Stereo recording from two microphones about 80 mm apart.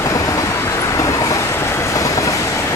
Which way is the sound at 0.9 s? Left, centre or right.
Left.